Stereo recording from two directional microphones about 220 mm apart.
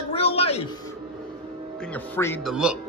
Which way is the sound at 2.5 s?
5° right (ahead or behind).